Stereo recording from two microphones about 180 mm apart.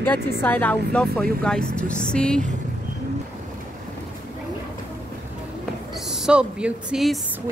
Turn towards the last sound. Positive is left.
turn(degrees=-5)  # may be behind; listen again after turning